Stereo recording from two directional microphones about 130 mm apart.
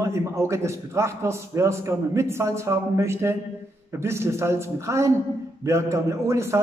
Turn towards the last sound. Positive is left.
turn(degrees=-20)  # may be behind; listen again after turning